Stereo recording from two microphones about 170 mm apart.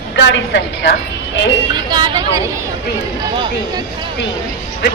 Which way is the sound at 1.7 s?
25° right (ahead or behind).